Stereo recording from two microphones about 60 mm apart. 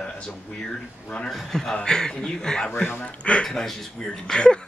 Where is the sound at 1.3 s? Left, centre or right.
Centre.